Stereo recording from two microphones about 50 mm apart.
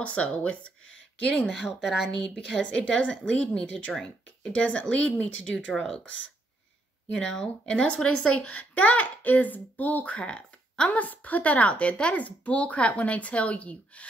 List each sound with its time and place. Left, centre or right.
0.0 s speech: left
1.5 s a woman's voice: centre
2.0 s a woman's voice: centre
2.6 s a woman's voice: left
7.1 s a woman's voice: centre; by 10.1 s left
10.1 s speech: left